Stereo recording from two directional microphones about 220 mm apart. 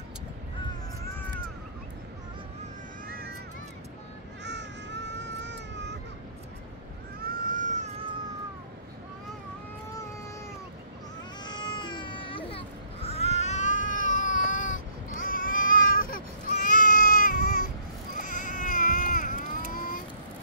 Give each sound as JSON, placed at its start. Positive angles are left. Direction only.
{"t": 4.5, "sound": "baby cry", "side_deg": -50}
{"t": 7.2, "sound": "baby cry", "side_deg": -40}
{"t": 11.4, "sound": "baby cry", "side_deg": 20}
{"t": 18.6, "sound": "a sound", "side_deg": 35}
{"t": 19.7, "sound": "vehicle", "side_deg": 40}